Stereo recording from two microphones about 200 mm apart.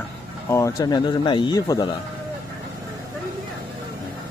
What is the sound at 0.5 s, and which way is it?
A man's voice, 15° left (ahead or behind).